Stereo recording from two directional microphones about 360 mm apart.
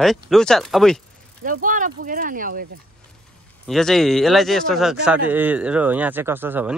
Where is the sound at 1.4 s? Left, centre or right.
Right.